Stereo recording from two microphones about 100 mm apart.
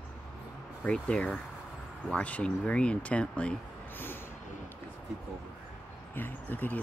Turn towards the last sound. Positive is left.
turn(degrees=15)  # may be behind; listen again after turning